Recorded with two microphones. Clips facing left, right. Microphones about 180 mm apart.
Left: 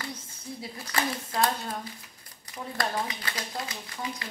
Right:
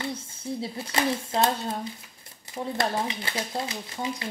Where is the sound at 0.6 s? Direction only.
25° right (ahead or behind).